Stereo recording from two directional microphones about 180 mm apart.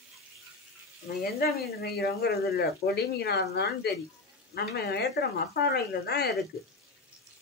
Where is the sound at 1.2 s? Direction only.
60° left (ahead or behind).